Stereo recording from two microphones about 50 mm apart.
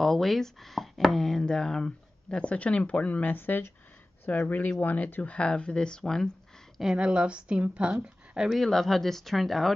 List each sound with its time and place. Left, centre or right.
0.0 s speech: centre; by 3.7 s left
4.3 s speech: left
6.8 s a woman's voice: centre
8.5 s speech: centre